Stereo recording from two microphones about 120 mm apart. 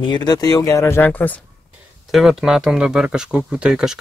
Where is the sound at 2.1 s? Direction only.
Centre (ahead or behind).